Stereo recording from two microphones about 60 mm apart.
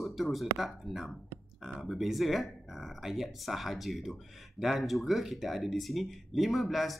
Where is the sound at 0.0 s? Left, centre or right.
Centre.